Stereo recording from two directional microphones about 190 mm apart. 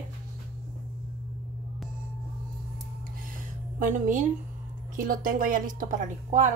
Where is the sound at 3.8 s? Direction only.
45° right (ahead or behind).